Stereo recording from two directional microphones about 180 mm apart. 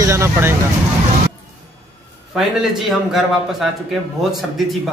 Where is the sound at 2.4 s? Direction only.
5° right (ahead or behind).